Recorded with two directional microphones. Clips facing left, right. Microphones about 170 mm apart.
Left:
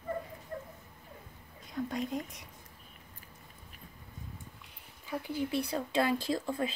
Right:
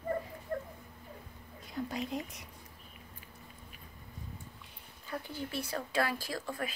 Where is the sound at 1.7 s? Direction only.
Centre (ahead or behind).